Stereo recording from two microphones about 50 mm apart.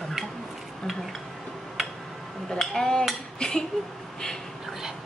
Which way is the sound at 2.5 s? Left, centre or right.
Centre.